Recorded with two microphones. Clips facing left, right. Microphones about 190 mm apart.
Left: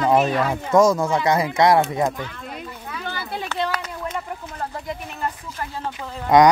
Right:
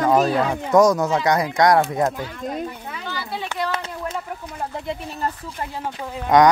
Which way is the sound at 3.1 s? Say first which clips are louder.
Even; 50° left (ahead or behind).